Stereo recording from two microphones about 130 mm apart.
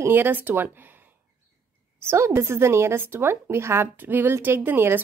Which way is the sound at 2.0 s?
20° right (ahead or behind).